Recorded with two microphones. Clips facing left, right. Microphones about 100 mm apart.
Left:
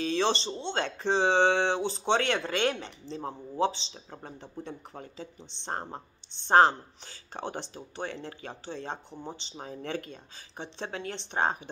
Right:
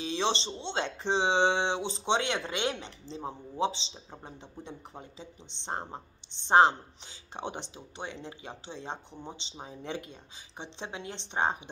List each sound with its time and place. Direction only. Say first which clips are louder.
0.0 s a sound: left 3 dB; 20° right (ahead or behind)
0.6 s speech: left 2 dB; 25° right (ahead or behind)
9.1 s speech: left 3 dB; 5° left (ahead or behind)
9.8 s speech: left 2 dB; 20° right (ahead or behind)